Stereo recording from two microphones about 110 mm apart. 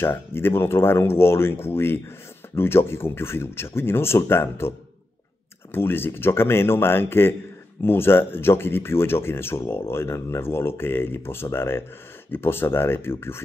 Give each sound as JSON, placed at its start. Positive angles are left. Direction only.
{"t": 0.0, "sound": "speech", "side_deg": 20}